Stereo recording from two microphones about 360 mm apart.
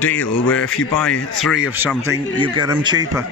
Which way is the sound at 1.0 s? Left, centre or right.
Centre.